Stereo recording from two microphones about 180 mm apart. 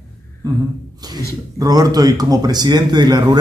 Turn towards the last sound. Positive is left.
turn(degrees=-20)  # may be behind; listen again after turning